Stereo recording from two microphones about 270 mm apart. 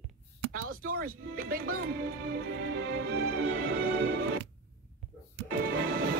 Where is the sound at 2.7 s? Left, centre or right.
Right.